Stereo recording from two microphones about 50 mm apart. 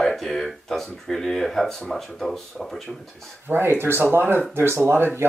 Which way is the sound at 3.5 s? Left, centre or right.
Right.